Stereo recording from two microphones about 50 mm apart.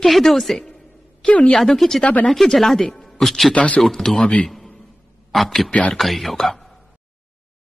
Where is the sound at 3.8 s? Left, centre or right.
Centre.